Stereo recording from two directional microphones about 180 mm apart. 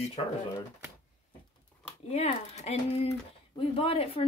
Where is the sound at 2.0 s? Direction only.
35° left (ahead or behind).